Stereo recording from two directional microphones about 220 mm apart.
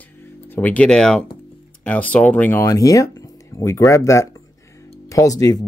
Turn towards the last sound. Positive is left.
turn(degrees=15)  # may be behind; listen again after turning